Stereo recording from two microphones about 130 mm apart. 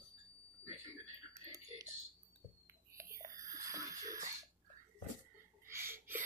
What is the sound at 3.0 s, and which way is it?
Whispering, 25° right (ahead or behind).